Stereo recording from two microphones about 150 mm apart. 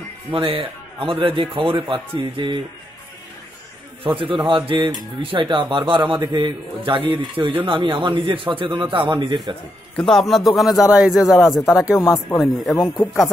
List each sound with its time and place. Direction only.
0.3 s speech: 35° right (ahead or behind)
4.0 s speech: 35° right (ahead or behind)
9.9 s a man's voice: centre (ahead or behind)
12.0 s speech: 15° left (ahead or behind)